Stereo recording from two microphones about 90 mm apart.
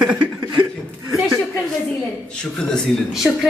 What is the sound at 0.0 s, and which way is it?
Chuckle, 15° right (ahead or behind).